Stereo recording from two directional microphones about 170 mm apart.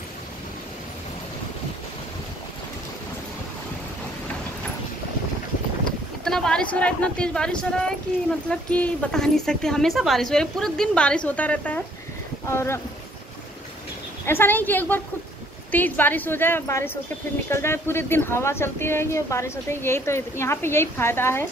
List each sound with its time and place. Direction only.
6.2 s a woman's voice: 5° left (ahead or behind)
14.2 s speech: 15° left (ahead or behind)